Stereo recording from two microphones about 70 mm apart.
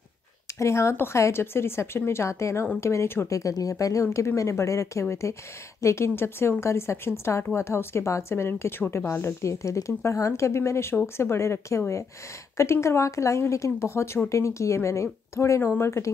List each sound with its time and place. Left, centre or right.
0.6 s speech: left
9.2 s speech: left